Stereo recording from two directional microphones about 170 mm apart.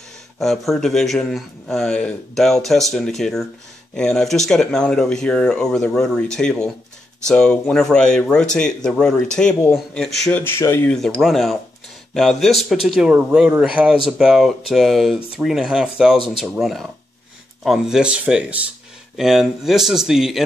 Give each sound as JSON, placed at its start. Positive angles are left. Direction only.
{"t": 0.4, "sound": "a man's voice", "side_deg": 0}
{"t": 11.1, "sound": "a man's voice", "side_deg": 0}